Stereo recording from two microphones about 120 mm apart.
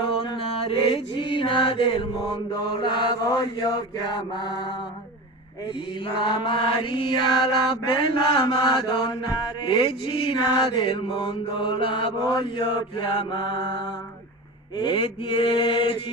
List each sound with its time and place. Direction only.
0.0 s chant: 50° left (ahead or behind)
2.7 s mantra: 45° left (ahead or behind)
6.1 s mantra: 40° left (ahead or behind)
14.9 s mantra: 45° left (ahead or behind)